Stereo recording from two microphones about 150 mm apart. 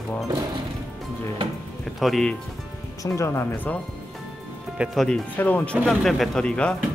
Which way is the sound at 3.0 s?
20° left (ahead or behind).